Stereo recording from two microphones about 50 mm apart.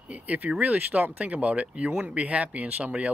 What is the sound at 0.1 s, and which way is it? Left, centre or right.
Speech, right.